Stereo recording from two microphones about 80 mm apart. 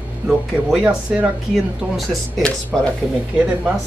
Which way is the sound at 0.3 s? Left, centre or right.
Centre.